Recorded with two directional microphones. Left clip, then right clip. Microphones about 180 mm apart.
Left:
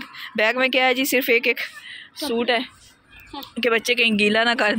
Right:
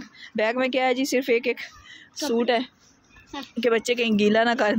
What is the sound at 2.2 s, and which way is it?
Speech, 25° right (ahead or behind).